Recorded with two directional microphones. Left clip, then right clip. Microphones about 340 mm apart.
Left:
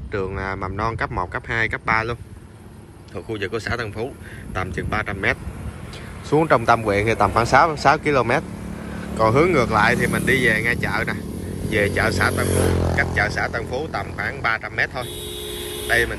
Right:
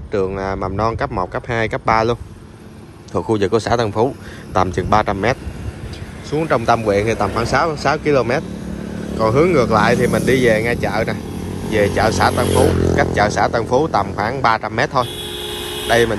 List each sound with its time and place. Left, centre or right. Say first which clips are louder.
0.1 s speech: right 6 dB; centre
12.4 s speech: right 6 dB; centre
12.9 s speech: right 5 dB; centre
15.2 s mains hum: right 5 dB; centre
15.9 s speech: right 5 dB; centre